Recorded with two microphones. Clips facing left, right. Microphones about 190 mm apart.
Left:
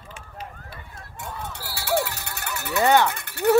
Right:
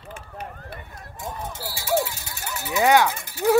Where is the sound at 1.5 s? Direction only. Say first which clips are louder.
Right 1 dB; 65° left (ahead or behind).